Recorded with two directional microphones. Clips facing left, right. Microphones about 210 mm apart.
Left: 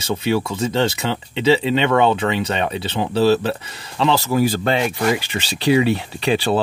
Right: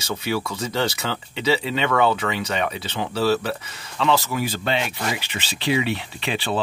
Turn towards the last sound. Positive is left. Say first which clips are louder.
# left 7 dB
turn(degrees=40)  # may be behind; listen again after turning